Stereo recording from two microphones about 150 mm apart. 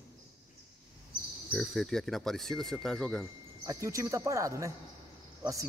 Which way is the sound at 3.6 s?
20° right (ahead or behind).